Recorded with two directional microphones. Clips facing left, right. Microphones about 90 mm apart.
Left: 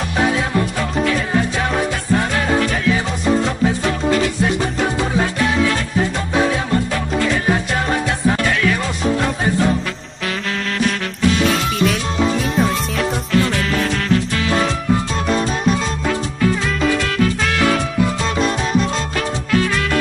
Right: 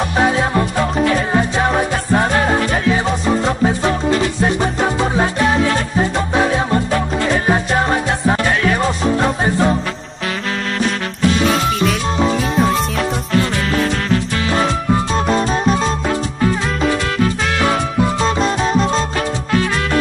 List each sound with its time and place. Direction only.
0.4 s music: 30° right (ahead or behind)
4.4 s music: 35° right (ahead or behind)
7.2 s music: 30° right (ahead or behind)
11.4 s music: centre (ahead or behind)
15.5 s music: 35° right (ahead or behind)
18.2 s music: 30° right (ahead or behind)